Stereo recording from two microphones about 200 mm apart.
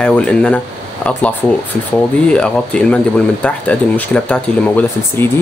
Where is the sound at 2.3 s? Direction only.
5° left (ahead or behind).